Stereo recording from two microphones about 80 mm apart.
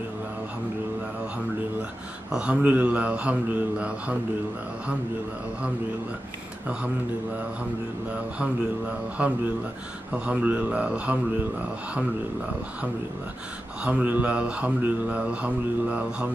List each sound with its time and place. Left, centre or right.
2.3 s speech: centre
8.4 s speech: centre
13.8 s speech: centre